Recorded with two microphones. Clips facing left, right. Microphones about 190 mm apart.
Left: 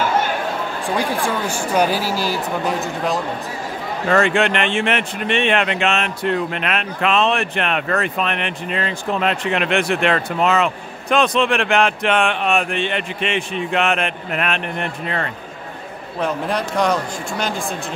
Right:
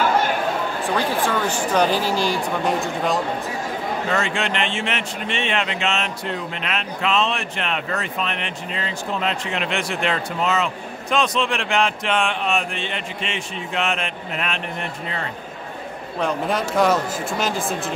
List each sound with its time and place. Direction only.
0.9 s speech: 10° left (ahead or behind)
4.1 s speech: 60° left (ahead or behind)
16.2 s speech: centre (ahead or behind)